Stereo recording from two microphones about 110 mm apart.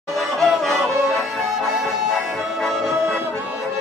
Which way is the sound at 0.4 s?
5° left (ahead or behind).